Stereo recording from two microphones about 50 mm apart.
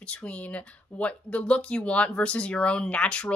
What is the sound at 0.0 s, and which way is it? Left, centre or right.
Speech, left.